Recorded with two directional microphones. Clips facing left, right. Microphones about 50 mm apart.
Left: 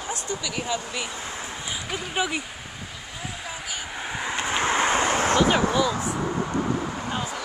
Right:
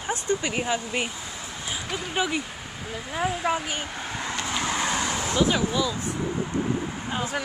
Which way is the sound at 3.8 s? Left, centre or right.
Centre.